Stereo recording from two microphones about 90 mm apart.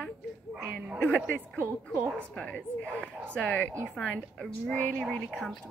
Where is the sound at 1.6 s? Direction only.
25° right (ahead or behind).